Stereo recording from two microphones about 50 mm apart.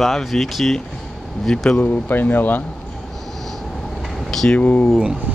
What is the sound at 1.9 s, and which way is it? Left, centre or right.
Speech, left.